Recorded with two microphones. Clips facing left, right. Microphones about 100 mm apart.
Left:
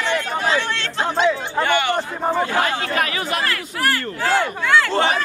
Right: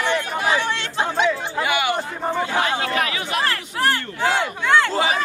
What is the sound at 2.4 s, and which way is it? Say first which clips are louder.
Speech: even; 45° left (ahead or behind).